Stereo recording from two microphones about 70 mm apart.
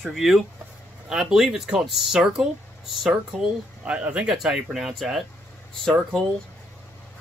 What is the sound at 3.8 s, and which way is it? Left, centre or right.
Speech, centre.